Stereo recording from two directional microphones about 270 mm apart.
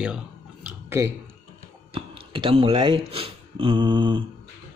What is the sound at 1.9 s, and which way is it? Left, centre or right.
Speech, centre.